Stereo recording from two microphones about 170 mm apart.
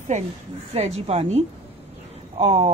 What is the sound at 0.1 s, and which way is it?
A woman's voice, 45° right (ahead or behind).